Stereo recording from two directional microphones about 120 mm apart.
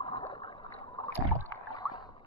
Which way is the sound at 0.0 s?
50° left (ahead or behind).